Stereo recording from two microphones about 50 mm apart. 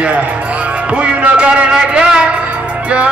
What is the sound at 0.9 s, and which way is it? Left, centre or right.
Speech, right.